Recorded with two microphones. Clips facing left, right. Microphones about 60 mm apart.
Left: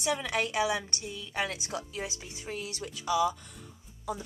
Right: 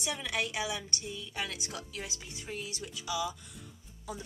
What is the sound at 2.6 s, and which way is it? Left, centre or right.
Speech, left.